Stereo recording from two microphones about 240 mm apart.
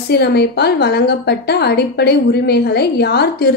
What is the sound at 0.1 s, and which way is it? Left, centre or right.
A woman's voice, left.